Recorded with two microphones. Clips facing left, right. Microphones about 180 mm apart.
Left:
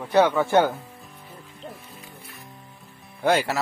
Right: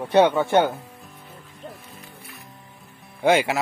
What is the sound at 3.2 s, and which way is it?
Speech, 10° right (ahead or behind).